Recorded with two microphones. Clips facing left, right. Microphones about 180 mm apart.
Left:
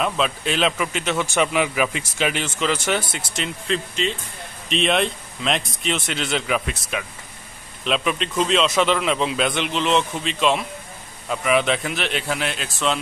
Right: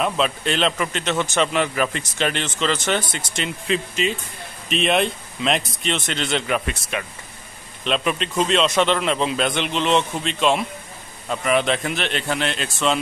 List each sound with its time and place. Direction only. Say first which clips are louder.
0.0 s a man's voice: right 1 dB; centre (ahead or behind)